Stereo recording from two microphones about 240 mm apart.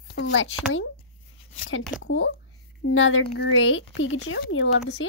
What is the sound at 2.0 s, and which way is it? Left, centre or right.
Speech, left.